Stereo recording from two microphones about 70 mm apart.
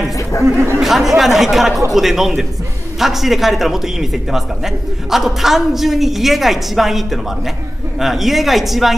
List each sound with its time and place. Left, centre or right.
0.7 s a woman's voice: centre